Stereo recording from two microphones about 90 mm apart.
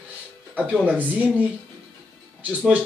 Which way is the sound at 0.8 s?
20° right (ahead or behind).